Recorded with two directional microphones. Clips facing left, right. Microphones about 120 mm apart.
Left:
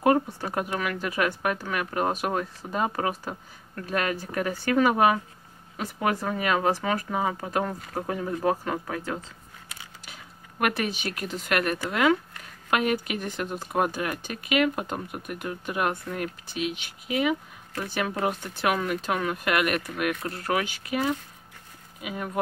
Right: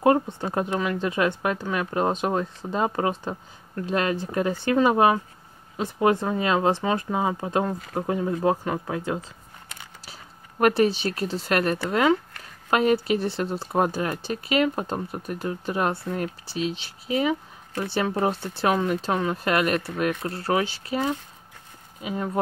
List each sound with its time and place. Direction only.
0.0 s speech: 25° right (ahead or behind)
10.0 s speech: 35° right (ahead or behind)
22.0 s speech: 30° right (ahead or behind)